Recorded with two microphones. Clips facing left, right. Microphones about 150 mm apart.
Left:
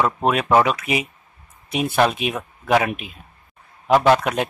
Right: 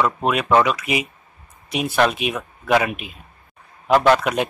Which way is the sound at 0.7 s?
30° left (ahead or behind).